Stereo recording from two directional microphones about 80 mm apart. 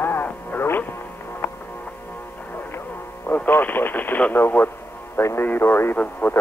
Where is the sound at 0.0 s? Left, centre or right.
Left.